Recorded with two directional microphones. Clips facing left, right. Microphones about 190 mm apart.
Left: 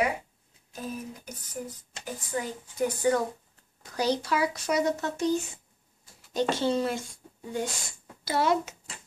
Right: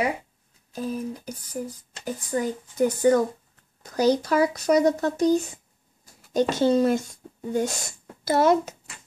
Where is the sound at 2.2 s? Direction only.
45° right (ahead or behind).